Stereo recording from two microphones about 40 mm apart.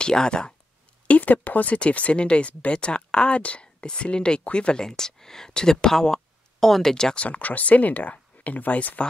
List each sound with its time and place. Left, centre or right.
0.0 s speech: centre
1.0 s speech: left
1.7 s speech: left
4.8 s speech: centre
7.2 s speech: left